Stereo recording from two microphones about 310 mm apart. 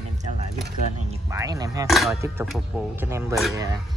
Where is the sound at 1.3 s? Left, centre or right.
Centre.